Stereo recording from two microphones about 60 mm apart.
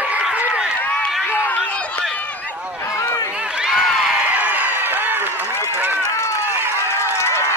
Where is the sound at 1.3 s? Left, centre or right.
Left.